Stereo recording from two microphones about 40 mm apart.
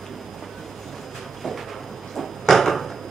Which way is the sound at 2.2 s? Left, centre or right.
Centre.